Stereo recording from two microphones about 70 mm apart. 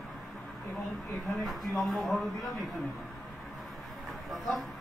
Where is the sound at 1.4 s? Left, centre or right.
Centre.